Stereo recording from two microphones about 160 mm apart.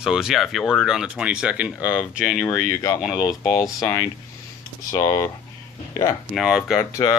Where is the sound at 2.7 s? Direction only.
20° left (ahead or behind).